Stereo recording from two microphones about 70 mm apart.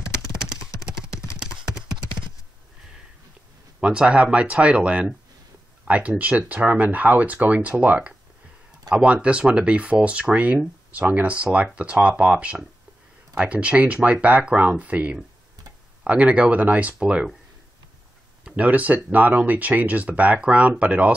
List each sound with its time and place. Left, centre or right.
1.1 s clip-clop: left
1.6 s clip-clop: right
3.8 s speech: centre
18.4 s speech: right